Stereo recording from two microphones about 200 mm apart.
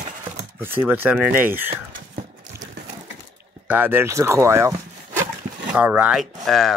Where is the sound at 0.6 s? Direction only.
10° right (ahead or behind).